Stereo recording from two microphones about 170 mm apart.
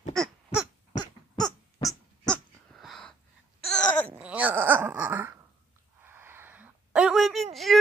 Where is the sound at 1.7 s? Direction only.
25° left (ahead or behind).